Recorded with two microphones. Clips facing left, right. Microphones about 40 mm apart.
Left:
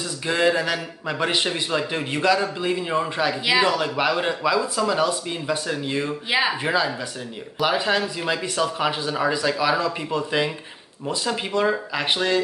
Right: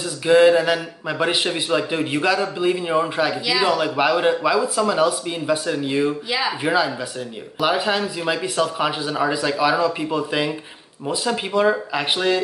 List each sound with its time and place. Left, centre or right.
0.3 s a man's voice: centre
6.6 s a man's voice: centre